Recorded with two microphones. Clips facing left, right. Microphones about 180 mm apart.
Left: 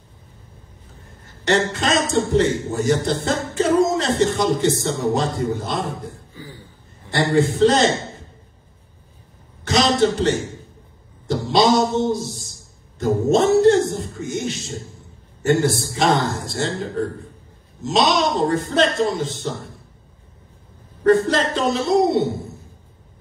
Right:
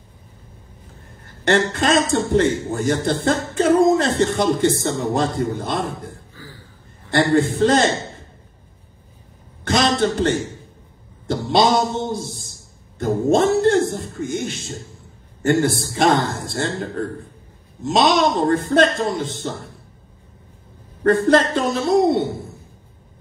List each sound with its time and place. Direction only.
1.4 s speech: 55° right (ahead or behind)
6.3 s a sound: 20° left (ahead or behind)
7.5 s a man's voice: 55° right (ahead or behind)
9.7 s a sound: 55° right (ahead or behind)
11.2 s a man's voice: 55° right (ahead or behind)
17.8 s a man's voice: 55° right (ahead or behind)
21.0 s a man's voice: 55° right (ahead or behind)